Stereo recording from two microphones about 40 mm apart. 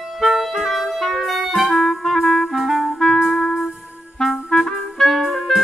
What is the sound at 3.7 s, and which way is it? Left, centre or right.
Music, centre.